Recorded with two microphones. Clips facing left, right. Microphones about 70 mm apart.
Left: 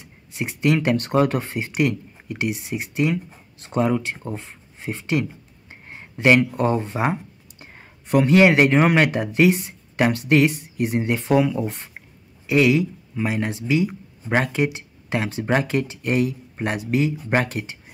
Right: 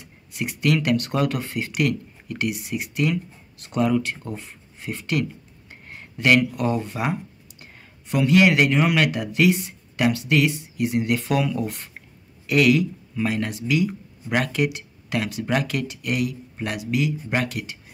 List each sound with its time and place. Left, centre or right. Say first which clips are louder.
0.0 s speech: left 1 dB; left